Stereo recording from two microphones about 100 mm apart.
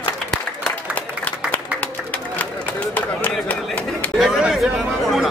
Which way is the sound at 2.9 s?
15° left (ahead or behind).